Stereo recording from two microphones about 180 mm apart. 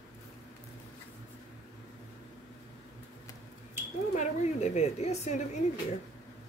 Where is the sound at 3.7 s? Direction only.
40° left (ahead or behind).